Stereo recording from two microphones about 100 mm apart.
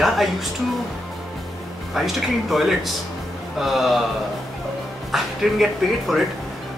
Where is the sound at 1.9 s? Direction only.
Centre (ahead or behind).